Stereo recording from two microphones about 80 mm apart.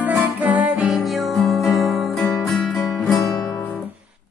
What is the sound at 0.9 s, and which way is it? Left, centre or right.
Music, centre.